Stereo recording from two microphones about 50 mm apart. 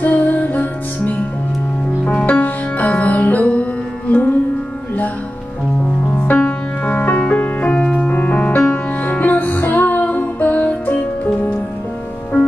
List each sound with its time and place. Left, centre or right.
0.0 s music: left
2.2 s music: left
6.2 s music: left